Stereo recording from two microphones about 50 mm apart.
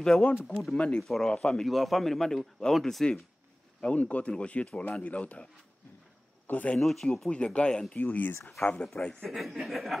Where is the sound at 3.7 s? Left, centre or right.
Left.